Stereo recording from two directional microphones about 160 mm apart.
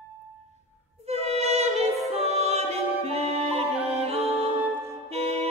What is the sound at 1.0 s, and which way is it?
Music, 40° right (ahead or behind).